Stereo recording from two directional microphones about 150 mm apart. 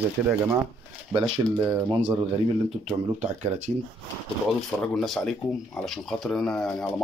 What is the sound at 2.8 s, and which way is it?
Speech, 50° right (ahead or behind).